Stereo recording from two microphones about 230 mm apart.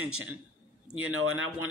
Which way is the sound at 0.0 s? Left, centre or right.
Right.